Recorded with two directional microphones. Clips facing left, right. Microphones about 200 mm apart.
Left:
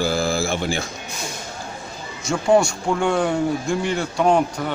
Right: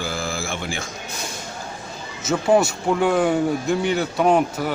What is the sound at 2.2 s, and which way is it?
Speech, 5° right (ahead or behind).